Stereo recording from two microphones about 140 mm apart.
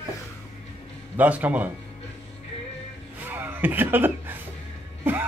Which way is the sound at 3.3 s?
15° right (ahead or behind).